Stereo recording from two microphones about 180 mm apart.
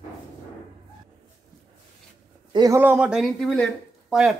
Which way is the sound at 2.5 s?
20° right (ahead or behind).